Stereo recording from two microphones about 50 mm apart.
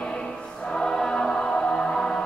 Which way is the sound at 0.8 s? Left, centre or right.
Centre.